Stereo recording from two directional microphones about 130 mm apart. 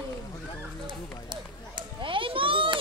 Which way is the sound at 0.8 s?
35° right (ahead or behind).